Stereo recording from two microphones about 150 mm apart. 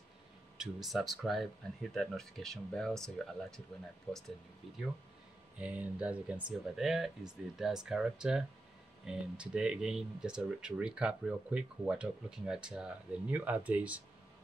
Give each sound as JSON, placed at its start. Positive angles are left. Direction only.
{"t": 0.6, "sound": "speech", "side_deg": 0}
{"t": 5.6, "sound": "speech", "side_deg": -10}